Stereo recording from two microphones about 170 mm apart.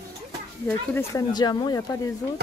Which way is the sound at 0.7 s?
15° left (ahead or behind).